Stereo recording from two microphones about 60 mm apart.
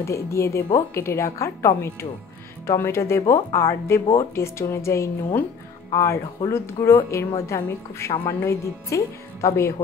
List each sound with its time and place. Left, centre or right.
0.0 s a woman's voice: left